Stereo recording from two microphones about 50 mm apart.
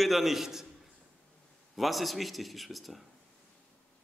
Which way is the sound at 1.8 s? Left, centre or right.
Centre.